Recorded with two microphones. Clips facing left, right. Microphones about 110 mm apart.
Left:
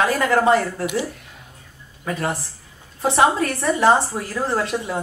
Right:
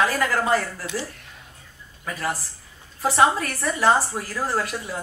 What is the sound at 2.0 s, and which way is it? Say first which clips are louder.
Speech: left 4 dB; 30° left (ahead or behind).